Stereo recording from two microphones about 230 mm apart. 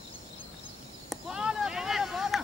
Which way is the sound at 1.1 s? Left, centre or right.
Centre.